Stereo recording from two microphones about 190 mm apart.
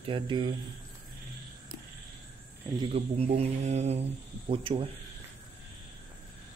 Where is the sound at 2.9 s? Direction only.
35° right (ahead or behind).